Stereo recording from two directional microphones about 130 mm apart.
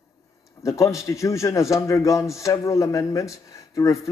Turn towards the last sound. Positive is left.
turn(degrees=25)  # may be behind; listen again after turning